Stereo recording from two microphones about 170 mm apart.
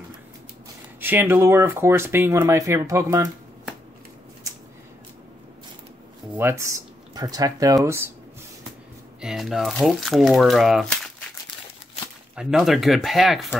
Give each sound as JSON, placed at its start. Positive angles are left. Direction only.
{"t": 1.0, "sound": "speech", "side_deg": -10}
{"t": 6.3, "sound": "speech", "side_deg": -15}
{"t": 9.2, "sound": "speech", "side_deg": 0}
{"t": 12.4, "sound": "speech", "side_deg": 0}